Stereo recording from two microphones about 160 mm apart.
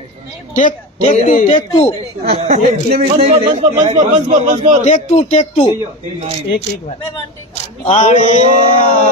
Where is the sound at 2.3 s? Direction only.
40° right (ahead or behind).